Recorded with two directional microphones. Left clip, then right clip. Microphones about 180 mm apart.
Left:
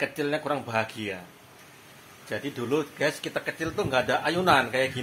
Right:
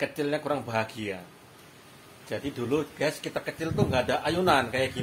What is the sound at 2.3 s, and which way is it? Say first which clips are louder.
Speech: left 1 dB; 15° left (ahead or behind).